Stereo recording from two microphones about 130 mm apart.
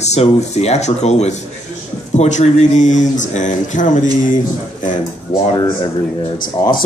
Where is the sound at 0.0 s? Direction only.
55° left (ahead or behind); by 4.4 s 75° left (ahead or behind).